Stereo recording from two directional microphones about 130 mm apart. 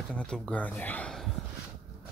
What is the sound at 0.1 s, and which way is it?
Speech, 10° left (ahead or behind).